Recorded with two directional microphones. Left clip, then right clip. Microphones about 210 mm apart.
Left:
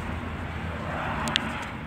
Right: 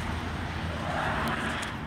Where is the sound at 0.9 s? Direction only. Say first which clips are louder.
Left 2 dB; 45° left (ahead or behind).